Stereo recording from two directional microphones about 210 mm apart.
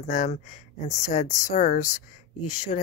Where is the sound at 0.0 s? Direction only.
35° left (ahead or behind).